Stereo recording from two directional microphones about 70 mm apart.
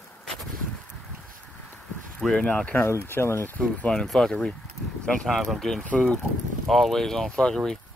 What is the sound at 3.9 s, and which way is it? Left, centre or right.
Speech, centre.